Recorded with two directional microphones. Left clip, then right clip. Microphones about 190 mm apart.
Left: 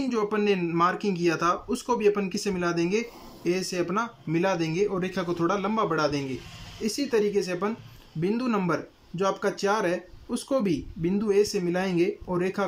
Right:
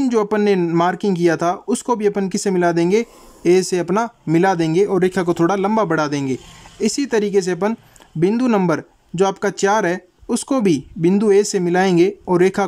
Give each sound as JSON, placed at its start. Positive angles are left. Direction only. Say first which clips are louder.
{"t": 0.0, "sound": "speech", "louder": "right 9 dB", "side_deg": -50}